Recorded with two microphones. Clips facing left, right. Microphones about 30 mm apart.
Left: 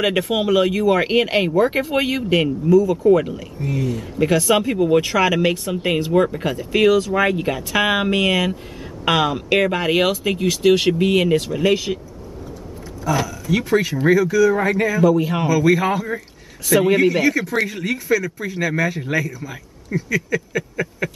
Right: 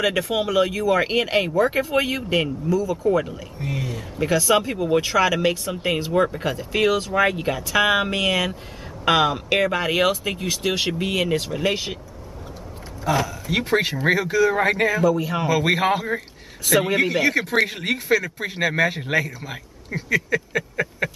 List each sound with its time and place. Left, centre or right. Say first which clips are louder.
0.0 s speech: left 3 dB; centre
2.9 s speech: left 6 dB; centre
3.5 s a man's voice: left 5 dB; right
4.2 s speech: left 2 dB; centre
9.6 s speech: left 3 dB; centre
11.3 s speech: left 4 dB; centre
13.2 s a man's voice: left 2 dB; right
15.0 s speech: left 4 dB; centre
15.4 s a man's voice: left 2 dB; right
16.6 s a man's voice: left 4 dB; centre
17.3 s a man's voice: even; right